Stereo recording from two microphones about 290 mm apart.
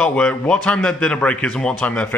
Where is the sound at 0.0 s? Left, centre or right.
Centre.